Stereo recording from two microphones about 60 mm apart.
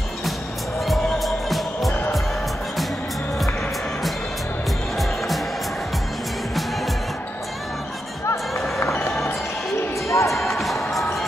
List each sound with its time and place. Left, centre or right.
0.7 s music: centre
10.0 s music: left
10.3 s music: centre